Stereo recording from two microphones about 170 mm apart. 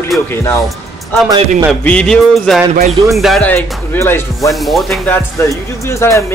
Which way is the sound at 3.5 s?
15° left (ahead or behind).